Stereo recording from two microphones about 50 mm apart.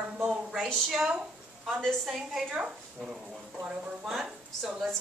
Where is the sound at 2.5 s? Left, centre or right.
Centre.